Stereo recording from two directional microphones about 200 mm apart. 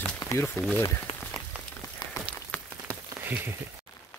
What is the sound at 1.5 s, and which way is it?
Rain on surface, 5° right (ahead or behind).